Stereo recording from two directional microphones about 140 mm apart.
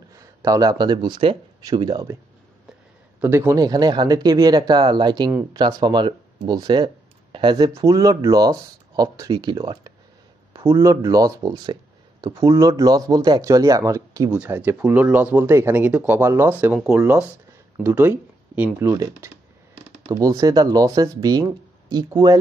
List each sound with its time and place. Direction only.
0.2 s speech: 25° right (ahead or behind)
3.2 s speech: 15° right (ahead or behind); by 7.7 s 35° right (ahead or behind)
7.7 s speech: 25° right (ahead or behind)
10.5 s speech: 20° right (ahead or behind)
14.3 s speech: 10° right (ahead or behind)
17.0 s speech: 15° right (ahead or behind)